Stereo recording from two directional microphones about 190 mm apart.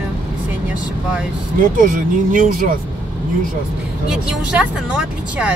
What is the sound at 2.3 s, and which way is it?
Speech, 45° right (ahead or behind).